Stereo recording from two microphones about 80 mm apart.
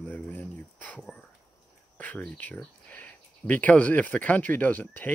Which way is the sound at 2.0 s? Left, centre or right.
Centre.